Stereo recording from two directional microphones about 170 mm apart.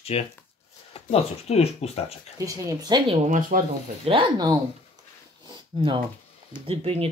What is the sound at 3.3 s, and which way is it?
Speech, 50° right (ahead or behind).